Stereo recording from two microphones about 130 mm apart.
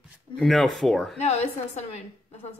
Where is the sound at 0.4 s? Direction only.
Centre (ahead or behind).